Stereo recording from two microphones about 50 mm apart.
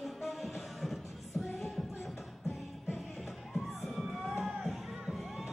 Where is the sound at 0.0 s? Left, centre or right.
Centre.